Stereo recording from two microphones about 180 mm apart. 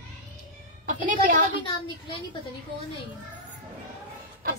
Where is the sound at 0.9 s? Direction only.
45° right (ahead or behind).